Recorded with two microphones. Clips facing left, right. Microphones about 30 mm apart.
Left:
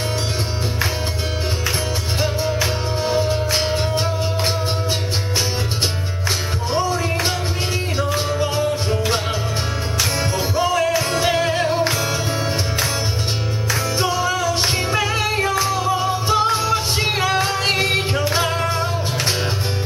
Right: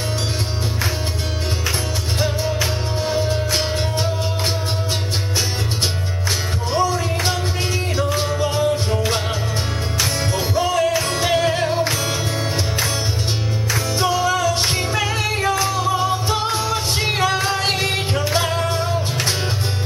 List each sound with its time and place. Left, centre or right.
2.1 s music: centre
6.7 s music: centre
10.3 s music: centre
13.9 s music: centre